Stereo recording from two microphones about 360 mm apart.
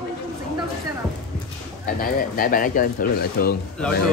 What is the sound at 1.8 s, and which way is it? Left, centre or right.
Speech, left.